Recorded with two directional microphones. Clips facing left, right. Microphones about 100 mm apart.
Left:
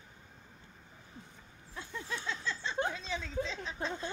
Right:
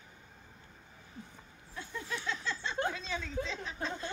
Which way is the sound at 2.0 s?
25° left (ahead or behind).